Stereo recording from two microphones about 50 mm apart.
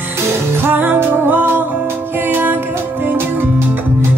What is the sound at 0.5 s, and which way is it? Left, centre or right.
Music, right.